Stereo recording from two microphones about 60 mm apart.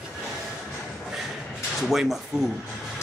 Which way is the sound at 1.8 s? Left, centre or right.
Centre.